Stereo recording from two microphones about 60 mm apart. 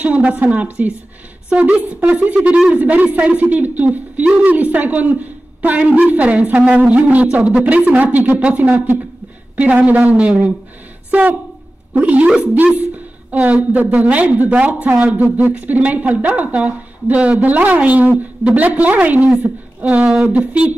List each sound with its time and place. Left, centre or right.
0.0 s a woman's voice: right